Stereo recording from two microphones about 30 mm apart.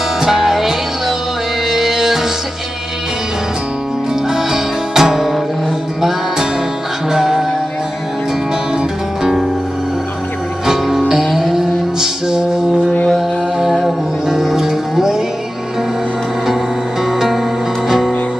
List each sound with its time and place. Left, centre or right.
0.2 s music: centre
4.3 s music: centre
8.7 s music: centre
10.7 s music: centre
13.1 s music: centre
17.8 s music: centre